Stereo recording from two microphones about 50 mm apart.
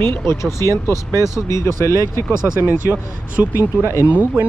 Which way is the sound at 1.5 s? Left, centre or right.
Left.